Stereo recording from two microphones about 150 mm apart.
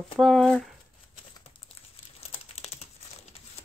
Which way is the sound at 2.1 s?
40° left (ahead or behind).